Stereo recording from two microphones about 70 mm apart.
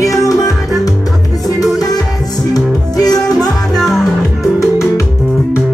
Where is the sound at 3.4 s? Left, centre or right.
Centre.